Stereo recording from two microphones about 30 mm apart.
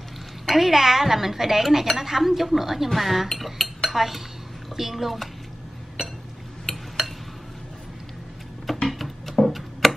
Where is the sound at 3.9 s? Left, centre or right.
Centre.